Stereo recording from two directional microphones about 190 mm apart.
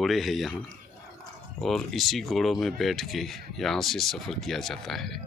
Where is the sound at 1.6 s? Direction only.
Centre (ahead or behind).